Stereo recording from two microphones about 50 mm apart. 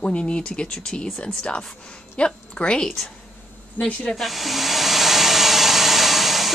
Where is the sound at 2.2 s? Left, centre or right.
Centre.